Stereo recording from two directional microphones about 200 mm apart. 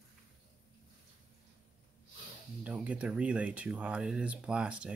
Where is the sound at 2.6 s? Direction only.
5° right (ahead or behind).